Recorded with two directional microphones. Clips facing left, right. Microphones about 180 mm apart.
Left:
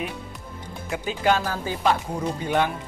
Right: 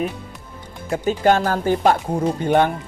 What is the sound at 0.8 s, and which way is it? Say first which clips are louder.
A man's voice: right 6 dB; 45° right (ahead or behind).